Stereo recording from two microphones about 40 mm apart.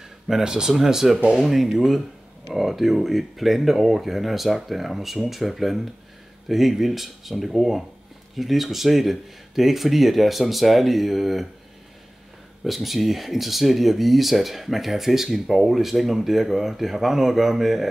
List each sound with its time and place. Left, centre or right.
0.3 s speech: centre
12.6 s speech: centre